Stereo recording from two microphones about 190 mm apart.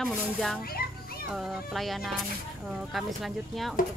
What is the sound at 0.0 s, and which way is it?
Speech, centre (ahead or behind).